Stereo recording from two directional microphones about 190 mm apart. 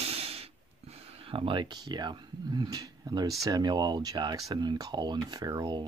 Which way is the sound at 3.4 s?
20° right (ahead or behind).